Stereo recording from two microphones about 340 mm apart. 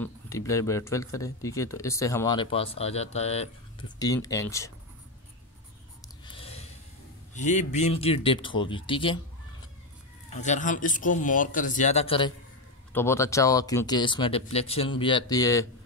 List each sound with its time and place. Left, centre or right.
0.0 s speech: centre
6.3 s a sound: centre
7.3 s speech: left
10.3 s speech: left